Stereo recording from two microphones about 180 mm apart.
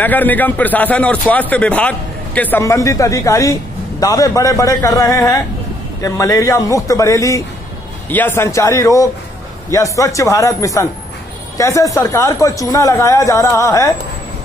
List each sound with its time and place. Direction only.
0.0 s speech: 10° left (ahead or behind)